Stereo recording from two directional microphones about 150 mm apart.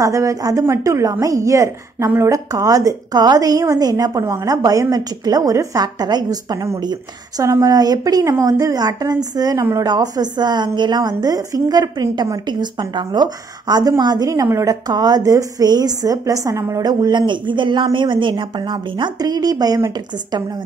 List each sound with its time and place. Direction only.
0.0 s a woman's voice: 20° right (ahead or behind)